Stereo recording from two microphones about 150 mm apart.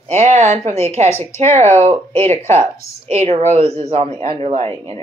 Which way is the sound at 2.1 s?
15° left (ahead or behind).